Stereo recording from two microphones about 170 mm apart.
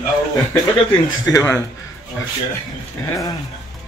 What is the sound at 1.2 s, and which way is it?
Speech, 15° left (ahead or behind).